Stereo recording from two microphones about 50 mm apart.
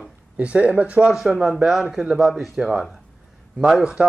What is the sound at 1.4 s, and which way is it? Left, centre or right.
A man's voice, centre.